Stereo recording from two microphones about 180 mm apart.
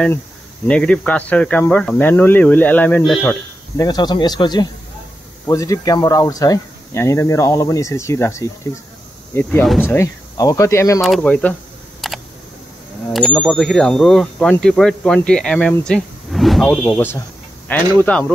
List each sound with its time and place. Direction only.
0.7 s speech: 5° left (ahead or behind)
3.7 s speech: 20° left (ahead or behind)
11.0 s speech: 5° left (ahead or behind)
12.0 s camera: centre (ahead or behind)
13.1 s speech: 5° left (ahead or behind)